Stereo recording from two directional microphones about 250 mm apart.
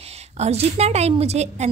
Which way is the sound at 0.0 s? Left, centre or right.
Right.